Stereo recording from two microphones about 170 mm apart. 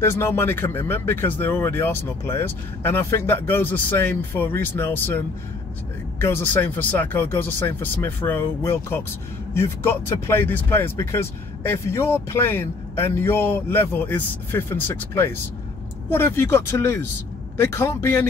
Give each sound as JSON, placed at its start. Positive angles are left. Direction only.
{"t": 0.0, "sound": "speech", "side_deg": 15}